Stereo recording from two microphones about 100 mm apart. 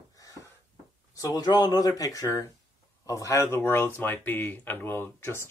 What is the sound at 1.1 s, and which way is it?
Speech, 40° left (ahead or behind).